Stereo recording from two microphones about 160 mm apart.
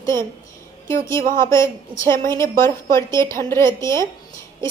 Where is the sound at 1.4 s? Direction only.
20° left (ahead or behind).